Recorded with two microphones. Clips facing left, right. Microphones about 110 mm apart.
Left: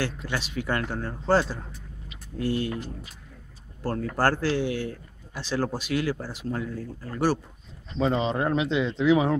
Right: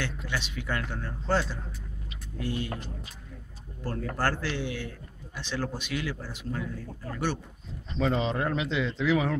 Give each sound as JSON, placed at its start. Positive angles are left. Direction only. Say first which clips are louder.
{"t": 0.0, "sound": "a man's voice", "louder": "left 4 dB", "side_deg": 40}
{"t": 4.2, "sound": "a man's voice", "louder": "left 7 dB", "side_deg": 40}
{"t": 8.0, "sound": "speech", "louder": "left 3 dB", "side_deg": 20}